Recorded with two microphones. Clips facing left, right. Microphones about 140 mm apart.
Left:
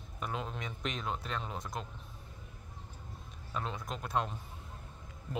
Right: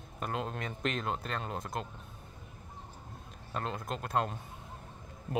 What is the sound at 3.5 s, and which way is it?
Speech, 50° right (ahead or behind).